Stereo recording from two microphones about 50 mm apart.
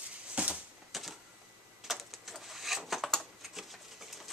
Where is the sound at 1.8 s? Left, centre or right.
Centre.